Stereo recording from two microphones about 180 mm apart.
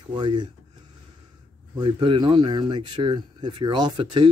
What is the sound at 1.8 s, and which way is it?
Speech, 25° right (ahead or behind).